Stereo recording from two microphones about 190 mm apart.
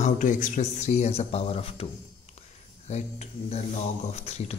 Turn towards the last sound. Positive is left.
turn(degrees=35)  # may be behind; listen again after turning